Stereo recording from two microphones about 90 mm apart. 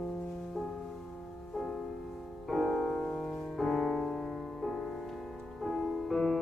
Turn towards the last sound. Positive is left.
turn(degrees=5)  # may be behind; listen again after turning